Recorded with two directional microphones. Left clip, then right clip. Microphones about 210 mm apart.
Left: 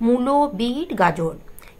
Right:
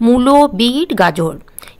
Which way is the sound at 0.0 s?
35° right (ahead or behind).